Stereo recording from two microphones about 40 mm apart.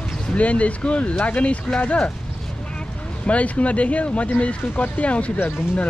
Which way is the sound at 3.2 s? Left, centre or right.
Left.